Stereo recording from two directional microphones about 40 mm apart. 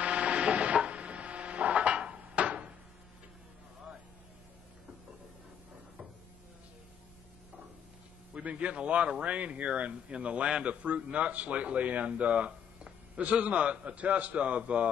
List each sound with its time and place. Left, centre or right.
0.0 s a sound: right
2.0 s cupboard open or close: right
8.4 s speech: right